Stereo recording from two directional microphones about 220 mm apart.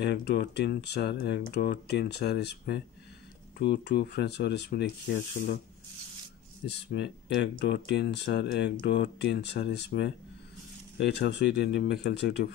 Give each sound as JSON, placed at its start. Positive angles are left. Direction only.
{"t": 0.0, "sound": "speech", "side_deg": 50}
{"t": 6.6, "sound": "speech", "side_deg": 50}